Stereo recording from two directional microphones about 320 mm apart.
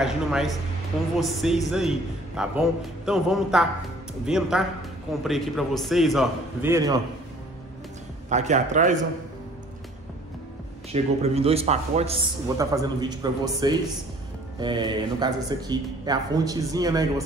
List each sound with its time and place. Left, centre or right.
0.0 s a man's voice: centre
8.3 s a man's voice: right
10.9 s a man's voice: centre